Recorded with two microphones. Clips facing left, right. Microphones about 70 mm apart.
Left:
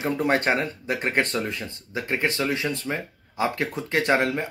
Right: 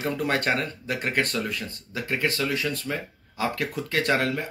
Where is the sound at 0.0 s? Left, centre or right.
Left.